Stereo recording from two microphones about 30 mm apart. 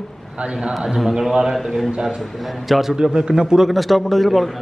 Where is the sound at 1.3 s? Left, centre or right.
Centre.